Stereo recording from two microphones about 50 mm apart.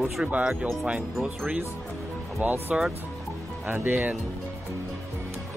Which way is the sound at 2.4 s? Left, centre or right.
Right.